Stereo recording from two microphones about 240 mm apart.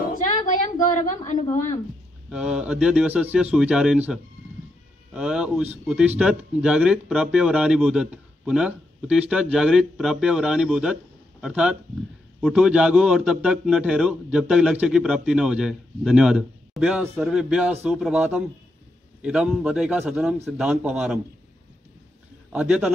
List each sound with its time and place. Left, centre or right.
0.8 s a woman's voice: left
2.2 s a man's voice: centre
22.5 s a man's voice: centre